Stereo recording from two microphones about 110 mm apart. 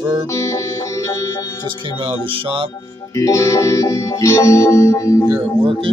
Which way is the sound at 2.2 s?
50° right (ahead or behind).